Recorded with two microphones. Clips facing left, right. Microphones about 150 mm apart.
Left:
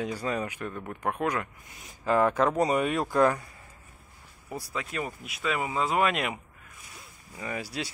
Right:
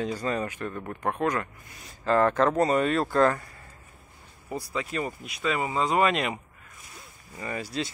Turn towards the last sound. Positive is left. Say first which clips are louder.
# right 2 dB
turn(degrees=10)  # may be behind; listen again after turning